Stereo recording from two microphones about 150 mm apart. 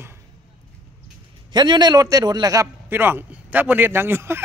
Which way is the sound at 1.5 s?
30° right (ahead or behind).